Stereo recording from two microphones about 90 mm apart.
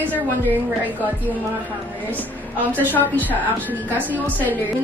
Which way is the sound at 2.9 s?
20° left (ahead or behind).